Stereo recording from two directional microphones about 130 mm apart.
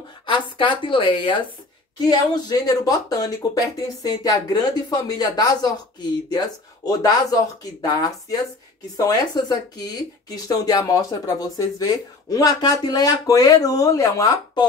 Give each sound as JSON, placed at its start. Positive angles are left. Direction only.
{"t": 0.3, "sound": "speech", "side_deg": 40}
{"t": 6.9, "sound": "speech", "side_deg": 30}